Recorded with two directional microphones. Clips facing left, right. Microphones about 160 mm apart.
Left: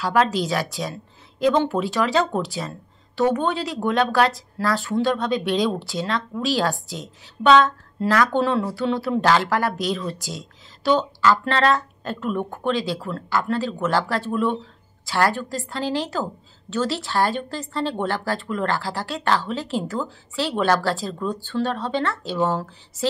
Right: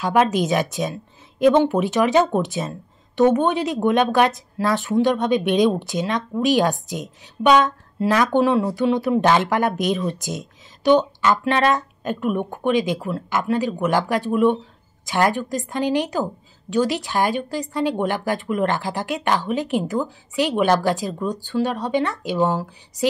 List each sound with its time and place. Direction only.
0.0 s a woman's voice: 20° right (ahead or behind)